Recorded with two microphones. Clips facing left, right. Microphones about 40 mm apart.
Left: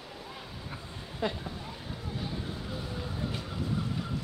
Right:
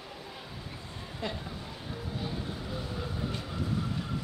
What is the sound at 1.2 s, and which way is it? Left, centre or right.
Speech, left.